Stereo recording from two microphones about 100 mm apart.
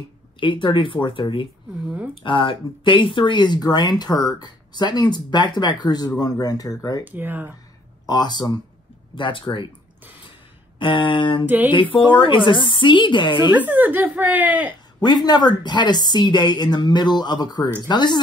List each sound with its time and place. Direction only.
0.4 s speech: 55° left (ahead or behind); by 7.0 s 35° left (ahead or behind)
7.1 s speech: 20° right (ahead or behind)
8.1 s speech: 45° left (ahead or behind)
10.8 s speech: 60° left (ahead or behind)
11.4 s speech: 20° right (ahead or behind)
11.7 s speech: 60° left (ahead or behind)
13.5 s speech: 15° right (ahead or behind)
15.0 s speech: 45° left (ahead or behind)